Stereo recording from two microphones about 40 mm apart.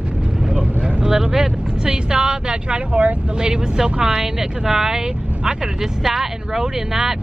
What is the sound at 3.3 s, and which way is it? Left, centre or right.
Speech, centre.